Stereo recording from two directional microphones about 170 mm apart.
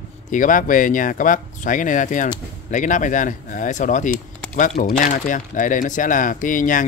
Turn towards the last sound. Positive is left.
turn(degrees=50)  # may be behind; listen again after turning